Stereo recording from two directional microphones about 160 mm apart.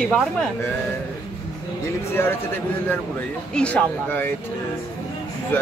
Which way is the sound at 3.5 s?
5° left (ahead or behind).